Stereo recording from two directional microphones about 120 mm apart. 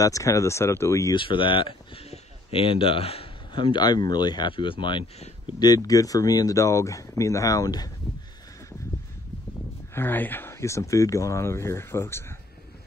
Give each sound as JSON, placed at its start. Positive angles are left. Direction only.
{"t": 0.0, "sound": "speech", "side_deg": 25}
{"t": 1.1, "sound": "speech", "side_deg": 45}
{"t": 5.6, "sound": "speech", "side_deg": 30}
{"t": 9.9, "sound": "speech", "side_deg": 15}